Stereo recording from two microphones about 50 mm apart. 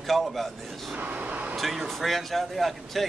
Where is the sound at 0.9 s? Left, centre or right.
Right.